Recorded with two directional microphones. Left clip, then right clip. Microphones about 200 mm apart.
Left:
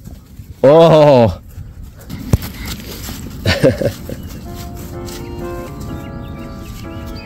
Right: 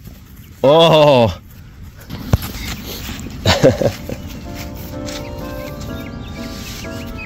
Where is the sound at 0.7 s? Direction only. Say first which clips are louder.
Left 2 dB; 45° left (ahead or behind).